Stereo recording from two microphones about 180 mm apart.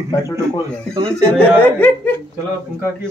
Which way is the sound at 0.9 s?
20° right (ahead or behind).